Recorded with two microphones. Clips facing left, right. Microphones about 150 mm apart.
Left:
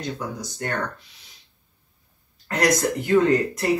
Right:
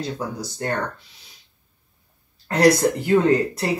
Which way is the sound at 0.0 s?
30° right (ahead or behind).